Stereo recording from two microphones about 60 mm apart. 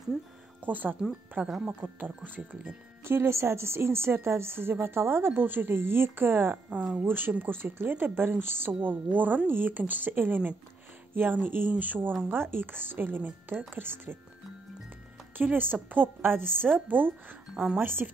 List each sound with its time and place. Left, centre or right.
0.7 s a woman's voice: right
1.5 s speech: centre
1.8 s speech: right
8.8 s a woman's voice: right
15.3 s speech: right